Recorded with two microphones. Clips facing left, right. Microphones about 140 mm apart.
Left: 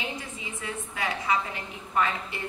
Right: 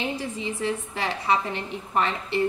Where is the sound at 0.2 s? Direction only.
30° right (ahead or behind).